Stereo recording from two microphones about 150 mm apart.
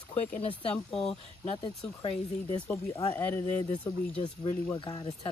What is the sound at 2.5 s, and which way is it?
Speech, 10° left (ahead or behind).